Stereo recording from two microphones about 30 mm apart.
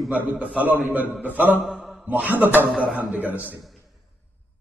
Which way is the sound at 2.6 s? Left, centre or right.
Right.